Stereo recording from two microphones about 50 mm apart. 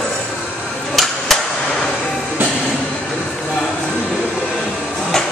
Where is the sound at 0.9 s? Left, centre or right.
Centre.